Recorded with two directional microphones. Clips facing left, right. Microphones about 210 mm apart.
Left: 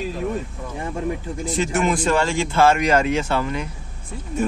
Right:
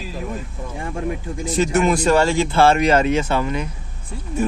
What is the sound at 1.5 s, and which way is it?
Speech, 40° right (ahead or behind).